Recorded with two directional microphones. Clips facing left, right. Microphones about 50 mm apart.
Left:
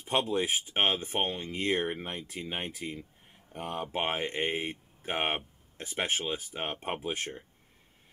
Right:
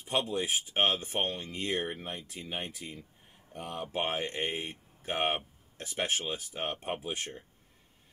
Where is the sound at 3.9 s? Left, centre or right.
Left.